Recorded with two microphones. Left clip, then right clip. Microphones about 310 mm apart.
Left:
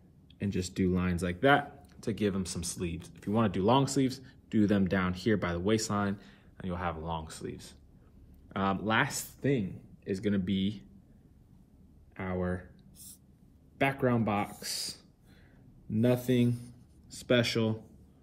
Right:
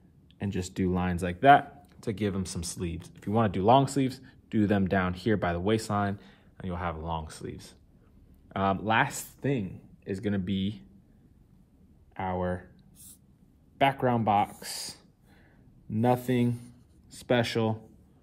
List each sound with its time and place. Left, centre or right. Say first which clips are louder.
0.4 s speech: right 1 dB; right
12.2 s a sound: right 4 dB; right
13.7 s speech: right 4 dB; right